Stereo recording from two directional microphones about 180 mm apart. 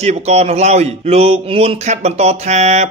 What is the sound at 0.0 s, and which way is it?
A man's voice, 35° right (ahead or behind).